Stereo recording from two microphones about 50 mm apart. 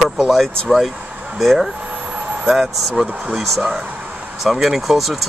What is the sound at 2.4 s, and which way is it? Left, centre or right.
Speech, centre.